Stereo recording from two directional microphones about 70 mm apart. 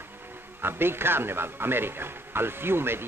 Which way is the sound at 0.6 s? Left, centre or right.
Right.